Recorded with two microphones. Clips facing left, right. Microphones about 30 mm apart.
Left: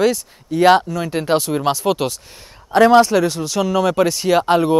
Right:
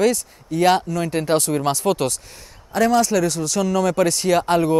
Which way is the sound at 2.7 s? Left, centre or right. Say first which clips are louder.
Left 7 dB; left.